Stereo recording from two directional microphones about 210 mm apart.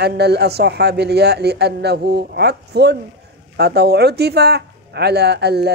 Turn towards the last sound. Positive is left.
turn(degrees=-50)  # may be behind; listen again after turning